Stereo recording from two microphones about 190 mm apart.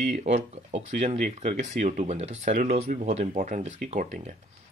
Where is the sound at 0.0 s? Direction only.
40° right (ahead or behind).